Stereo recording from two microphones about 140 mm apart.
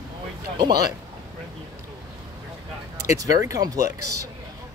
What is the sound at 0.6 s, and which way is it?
Speech, 30° right (ahead or behind).